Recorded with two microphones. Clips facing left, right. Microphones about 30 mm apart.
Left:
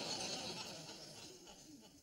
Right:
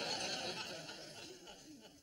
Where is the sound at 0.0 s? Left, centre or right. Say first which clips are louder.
Right 4 dB; right.